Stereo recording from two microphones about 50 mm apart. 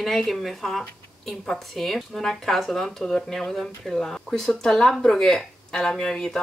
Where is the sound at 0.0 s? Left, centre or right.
Centre.